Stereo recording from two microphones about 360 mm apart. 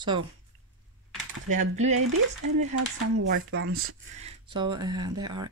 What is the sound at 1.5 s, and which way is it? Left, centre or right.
Speech, centre.